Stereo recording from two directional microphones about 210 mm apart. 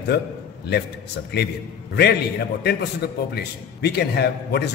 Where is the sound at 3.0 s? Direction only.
50° left (ahead or behind).